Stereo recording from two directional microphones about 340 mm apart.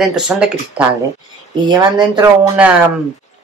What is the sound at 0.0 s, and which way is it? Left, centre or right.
Speech, centre.